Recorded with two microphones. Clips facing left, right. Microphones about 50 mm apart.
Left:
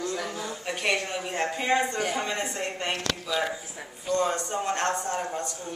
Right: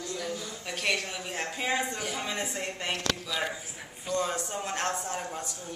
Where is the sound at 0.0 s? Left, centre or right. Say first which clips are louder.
Left 4 dB; left.